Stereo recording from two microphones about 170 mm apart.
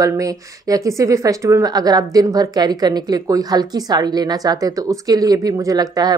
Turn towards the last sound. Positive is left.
turn(degrees=-20)  # may be behind; listen again after turning